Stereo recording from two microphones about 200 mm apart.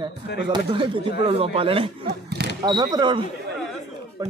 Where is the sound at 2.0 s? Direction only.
55° right (ahead or behind).